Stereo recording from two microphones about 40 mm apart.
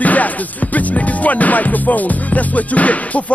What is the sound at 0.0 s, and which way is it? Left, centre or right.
Music, left.